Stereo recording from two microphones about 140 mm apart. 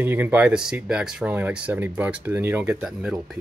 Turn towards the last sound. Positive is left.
turn(degrees=-5)  # may be behind; listen again after turning